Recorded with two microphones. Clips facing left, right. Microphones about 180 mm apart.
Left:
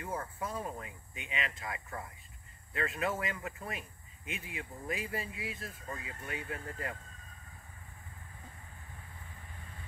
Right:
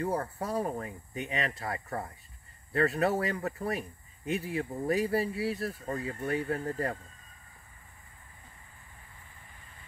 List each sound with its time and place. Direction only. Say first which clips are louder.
0.0 s speech: right 7 dB; 40° right (ahead or behind)